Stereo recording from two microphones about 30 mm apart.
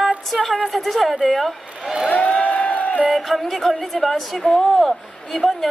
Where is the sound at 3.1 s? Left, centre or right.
Centre.